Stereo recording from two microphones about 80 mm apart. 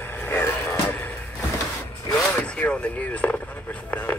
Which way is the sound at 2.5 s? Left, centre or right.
Centre.